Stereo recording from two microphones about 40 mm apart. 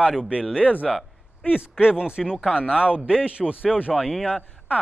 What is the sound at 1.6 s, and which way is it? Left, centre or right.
Speech, right.